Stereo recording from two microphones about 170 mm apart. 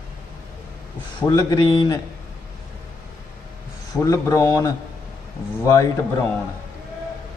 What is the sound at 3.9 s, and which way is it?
A man's voice, 20° left (ahead or behind).